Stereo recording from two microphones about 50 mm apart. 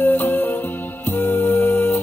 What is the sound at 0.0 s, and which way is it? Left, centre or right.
Music, left.